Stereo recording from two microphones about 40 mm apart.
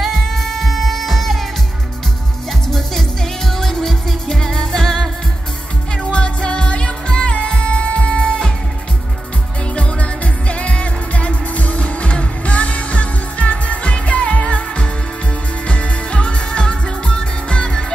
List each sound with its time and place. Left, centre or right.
0.0 s music: centre
2.7 s music: centre
6.0 s music: left
9.8 s music: left
15.6 s music: left